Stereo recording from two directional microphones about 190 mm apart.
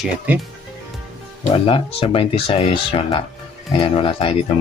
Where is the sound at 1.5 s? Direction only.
30° left (ahead or behind).